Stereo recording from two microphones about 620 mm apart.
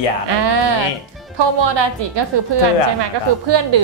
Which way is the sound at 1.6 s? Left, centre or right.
Right.